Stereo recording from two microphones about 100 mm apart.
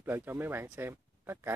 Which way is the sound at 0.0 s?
20° right (ahead or behind).